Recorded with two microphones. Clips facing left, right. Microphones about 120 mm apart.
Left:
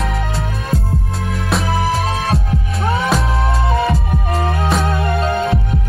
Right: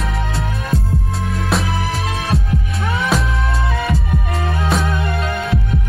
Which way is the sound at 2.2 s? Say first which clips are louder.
Left 1 dB; 25° left (ahead or behind).